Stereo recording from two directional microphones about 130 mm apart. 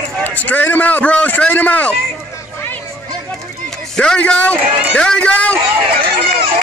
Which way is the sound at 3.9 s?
5° left (ahead or behind).